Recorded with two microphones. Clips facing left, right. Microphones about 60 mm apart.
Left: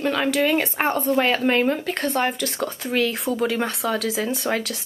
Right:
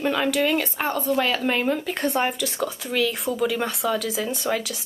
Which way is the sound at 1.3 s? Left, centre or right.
Centre.